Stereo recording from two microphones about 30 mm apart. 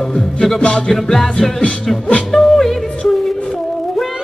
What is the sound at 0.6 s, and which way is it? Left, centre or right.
Music, left.